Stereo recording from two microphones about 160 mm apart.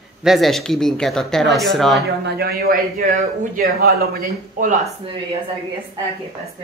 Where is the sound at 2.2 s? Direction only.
85° right; by 4.7 s 60° right (ahead or behind).